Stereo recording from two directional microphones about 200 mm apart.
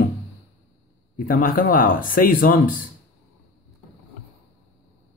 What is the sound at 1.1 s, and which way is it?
Speech, 45° left (ahead or behind).